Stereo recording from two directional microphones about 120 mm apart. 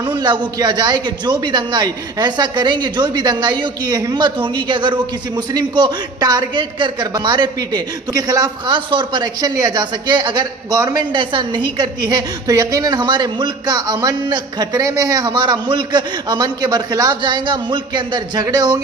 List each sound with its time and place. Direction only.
0.2 s a man's voice: 40° right (ahead or behind)